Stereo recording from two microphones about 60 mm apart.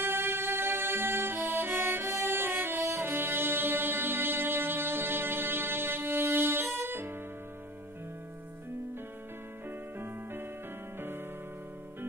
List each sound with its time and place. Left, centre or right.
0.0 s music: right
2.2 s music: right
9.7 s music: right